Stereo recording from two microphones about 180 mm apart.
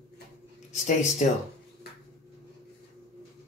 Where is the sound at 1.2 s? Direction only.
40° left (ahead or behind).